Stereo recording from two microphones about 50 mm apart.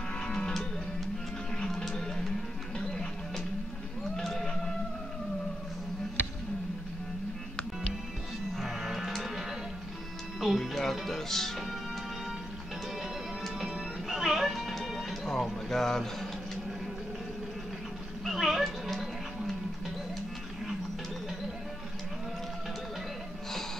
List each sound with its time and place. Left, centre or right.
0.2 s music: centre
1.6 s music: centre
4.2 s a sound: centre
8.5 s music: centre
10.4 s speech: centre
13.4 s music: centre
15.7 s speech: centre
18.2 s a sound: centre
18.6 s music: centre